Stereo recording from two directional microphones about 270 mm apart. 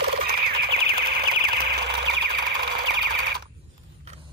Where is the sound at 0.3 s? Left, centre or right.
Right.